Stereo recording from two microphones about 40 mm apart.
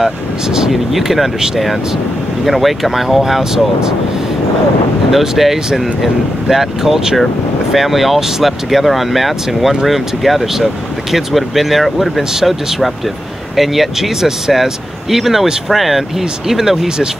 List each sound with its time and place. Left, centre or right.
0.0 s speech: centre
5.1 s speech: centre